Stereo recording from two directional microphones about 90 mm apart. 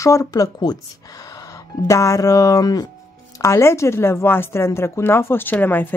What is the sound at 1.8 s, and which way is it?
Speech, 35° left (ahead or behind).